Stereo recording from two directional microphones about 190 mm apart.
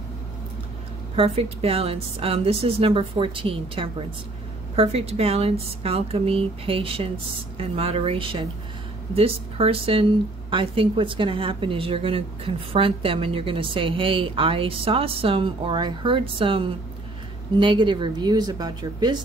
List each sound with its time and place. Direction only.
1.1 s a woman's voice: 30° right (ahead or behind)